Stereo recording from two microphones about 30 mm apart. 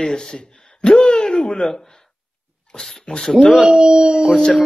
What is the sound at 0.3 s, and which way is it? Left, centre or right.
Gasp, left.